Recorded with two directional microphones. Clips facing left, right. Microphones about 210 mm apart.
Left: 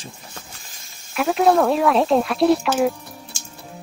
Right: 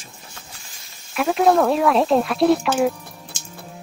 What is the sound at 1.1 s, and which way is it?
Speech, centre (ahead or behind).